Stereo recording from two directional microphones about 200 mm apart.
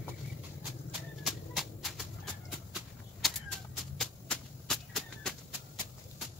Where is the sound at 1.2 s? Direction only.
Centre (ahead or behind).